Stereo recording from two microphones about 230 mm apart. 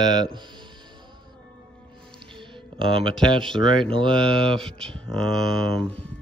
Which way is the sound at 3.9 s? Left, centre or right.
Right.